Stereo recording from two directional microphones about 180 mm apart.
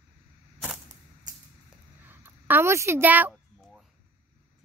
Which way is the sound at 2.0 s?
10° right (ahead or behind).